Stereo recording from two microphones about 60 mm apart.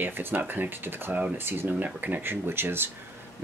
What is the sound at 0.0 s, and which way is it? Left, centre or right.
Speech, right.